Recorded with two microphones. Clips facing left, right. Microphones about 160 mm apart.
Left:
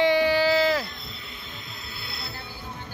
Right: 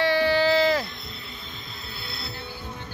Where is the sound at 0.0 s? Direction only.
15° left (ahead or behind).